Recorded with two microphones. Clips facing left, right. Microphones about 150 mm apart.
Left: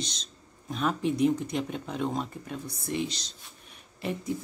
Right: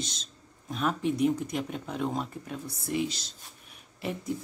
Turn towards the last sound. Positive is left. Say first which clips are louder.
# left 1 dB
turn(degrees=0)  # may be behind; listen again after turning